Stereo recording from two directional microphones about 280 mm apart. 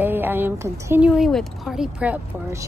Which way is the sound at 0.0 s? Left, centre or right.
Centre.